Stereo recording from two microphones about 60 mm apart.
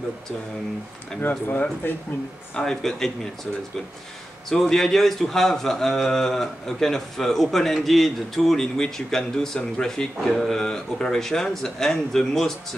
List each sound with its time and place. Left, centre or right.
1.3 s speech: left
2.5 s speech: centre
4.5 s a man's voice: centre